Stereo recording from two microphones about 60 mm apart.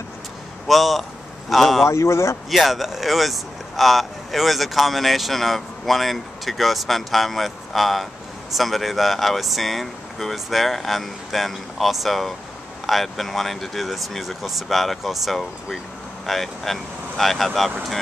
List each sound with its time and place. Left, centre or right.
0.7 s speech: centre
1.9 s speech: left
2.5 s speech: centre